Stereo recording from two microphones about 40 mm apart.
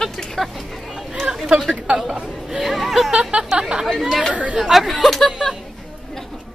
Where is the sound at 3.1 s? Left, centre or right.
Right.